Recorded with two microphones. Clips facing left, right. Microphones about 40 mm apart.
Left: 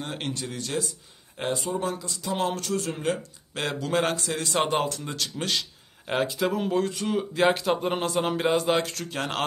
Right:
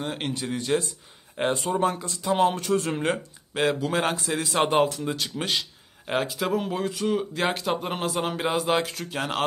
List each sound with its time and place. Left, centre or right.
0.0 s a man's voice: centre
0.3 s speech: right
1.3 s speech: right
3.5 s a man's voice: centre
4.6 s speech: centre